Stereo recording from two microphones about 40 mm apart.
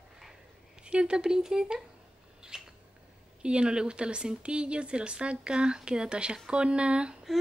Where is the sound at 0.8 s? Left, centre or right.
Right.